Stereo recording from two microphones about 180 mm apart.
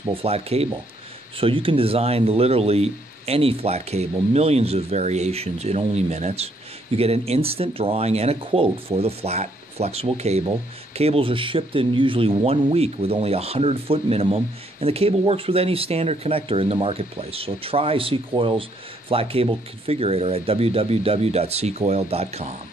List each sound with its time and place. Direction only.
0.1 s speech: 35° right (ahead or behind)